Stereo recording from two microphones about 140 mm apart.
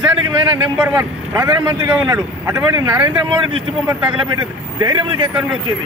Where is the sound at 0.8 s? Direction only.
10° right (ahead or behind).